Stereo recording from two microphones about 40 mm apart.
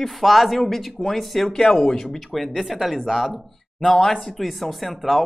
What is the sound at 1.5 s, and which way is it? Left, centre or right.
Speech, left.